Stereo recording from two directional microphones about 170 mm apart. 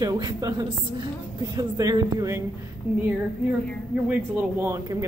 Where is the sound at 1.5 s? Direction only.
20° right (ahead or behind).